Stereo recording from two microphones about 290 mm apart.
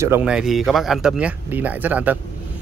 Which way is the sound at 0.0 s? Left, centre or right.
Centre.